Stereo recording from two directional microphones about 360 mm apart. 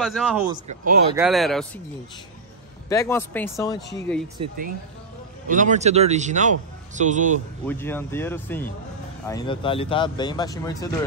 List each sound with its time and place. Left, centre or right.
0.0 s speech: centre
0.7 s speech: right
1.1 s speech: centre
2.9 s speech: centre
4.4 s speech: centre
7.6 s speech: centre